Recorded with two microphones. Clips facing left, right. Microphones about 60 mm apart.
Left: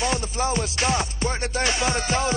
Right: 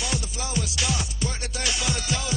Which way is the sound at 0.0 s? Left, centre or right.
Left.